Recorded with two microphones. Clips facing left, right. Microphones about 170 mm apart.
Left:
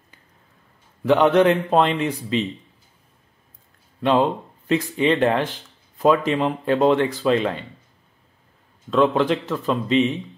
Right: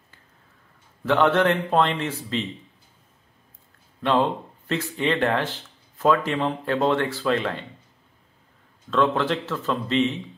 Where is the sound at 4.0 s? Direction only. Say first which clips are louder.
Left 3 dB; 20° left (ahead or behind).